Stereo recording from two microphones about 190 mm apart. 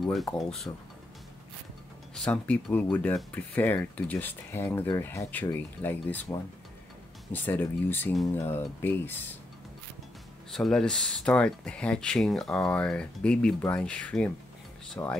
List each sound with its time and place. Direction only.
0.0 s speech: centre (ahead or behind)
2.1 s speech: 5° left (ahead or behind)
10.5 s speech: centre (ahead or behind)